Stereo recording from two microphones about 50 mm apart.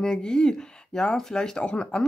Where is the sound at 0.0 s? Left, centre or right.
Centre.